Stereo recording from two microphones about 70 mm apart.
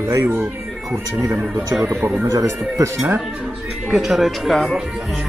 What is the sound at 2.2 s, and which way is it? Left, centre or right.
Speech, right.